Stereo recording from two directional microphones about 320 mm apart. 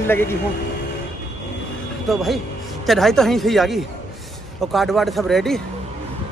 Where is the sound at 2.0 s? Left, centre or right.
Centre.